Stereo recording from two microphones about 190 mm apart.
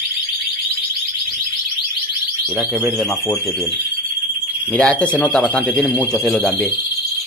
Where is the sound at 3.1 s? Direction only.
15° left (ahead or behind).